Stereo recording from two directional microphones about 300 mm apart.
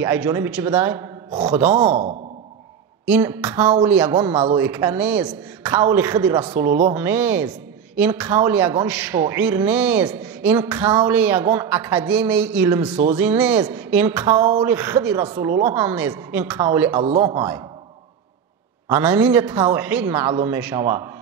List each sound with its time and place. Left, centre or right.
0.0 s a woman's voice: centre
1.9 s speech: right
3.1 s a woman's voice: centre
17.0 s a woman's voice: centre
18.9 s a woman's voice: centre